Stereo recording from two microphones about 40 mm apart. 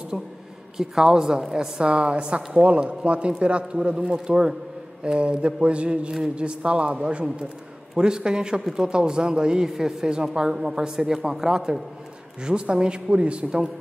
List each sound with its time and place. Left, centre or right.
0.1 s a woman's voice: centre; by 13.5 s right